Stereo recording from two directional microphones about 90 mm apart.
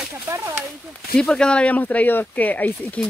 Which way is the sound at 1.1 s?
10° left (ahead or behind).